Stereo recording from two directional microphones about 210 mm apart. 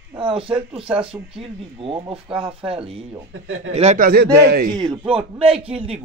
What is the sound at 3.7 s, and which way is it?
Speech, 35° right (ahead or behind).